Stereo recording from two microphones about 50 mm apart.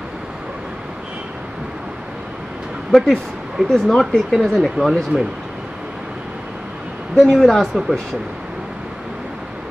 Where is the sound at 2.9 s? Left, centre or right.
Centre.